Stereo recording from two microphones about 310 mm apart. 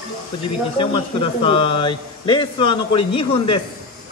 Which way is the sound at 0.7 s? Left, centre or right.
Centre.